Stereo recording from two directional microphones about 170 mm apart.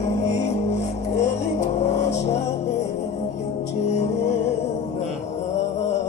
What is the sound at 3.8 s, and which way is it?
Music, 40° left (ahead or behind).